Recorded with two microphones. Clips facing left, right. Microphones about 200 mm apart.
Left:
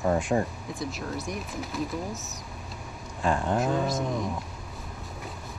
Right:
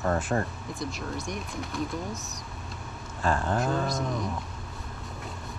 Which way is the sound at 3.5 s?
Centre (ahead or behind).